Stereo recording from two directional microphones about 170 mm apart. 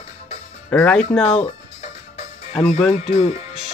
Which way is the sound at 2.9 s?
40° left (ahead or behind).